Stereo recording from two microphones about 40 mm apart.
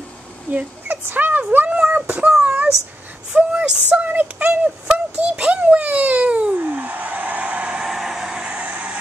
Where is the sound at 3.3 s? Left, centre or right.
Right.